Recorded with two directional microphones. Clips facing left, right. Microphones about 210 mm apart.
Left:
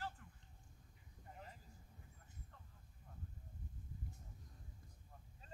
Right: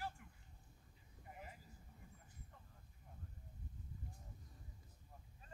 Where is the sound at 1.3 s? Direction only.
10° right (ahead or behind).